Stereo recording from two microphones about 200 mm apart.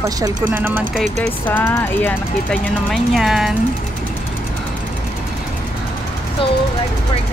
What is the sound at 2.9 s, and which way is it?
Speech, centre (ahead or behind).